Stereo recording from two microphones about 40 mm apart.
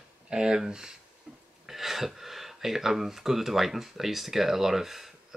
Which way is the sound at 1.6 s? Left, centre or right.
Centre.